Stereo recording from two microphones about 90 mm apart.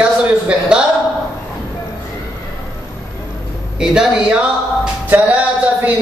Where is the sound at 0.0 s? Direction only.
10° right (ahead or behind).